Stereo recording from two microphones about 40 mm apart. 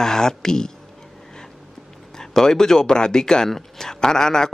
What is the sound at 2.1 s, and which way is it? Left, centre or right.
Speech, centre.